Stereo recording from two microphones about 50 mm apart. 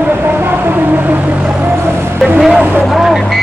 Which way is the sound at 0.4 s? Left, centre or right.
Right.